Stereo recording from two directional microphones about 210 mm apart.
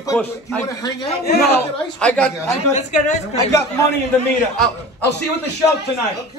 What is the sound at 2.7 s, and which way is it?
Speech, 35° left (ahead or behind).